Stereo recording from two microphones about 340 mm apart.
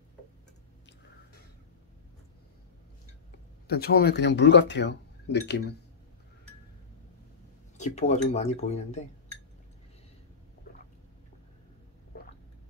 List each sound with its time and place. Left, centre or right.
3.6 s speech: left
7.7 s speech: centre